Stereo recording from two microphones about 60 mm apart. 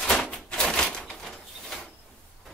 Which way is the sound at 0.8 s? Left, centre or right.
Centre.